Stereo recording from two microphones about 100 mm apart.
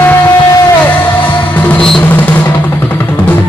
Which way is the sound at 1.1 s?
15° left (ahead or behind).